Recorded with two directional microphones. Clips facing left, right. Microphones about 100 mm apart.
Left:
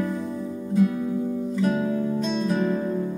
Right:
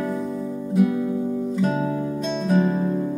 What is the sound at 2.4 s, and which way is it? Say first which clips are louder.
Music: right 7 dB; 10° right (ahead or behind).